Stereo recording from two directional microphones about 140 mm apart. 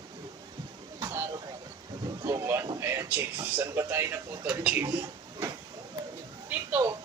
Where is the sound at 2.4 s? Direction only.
20° right (ahead or behind).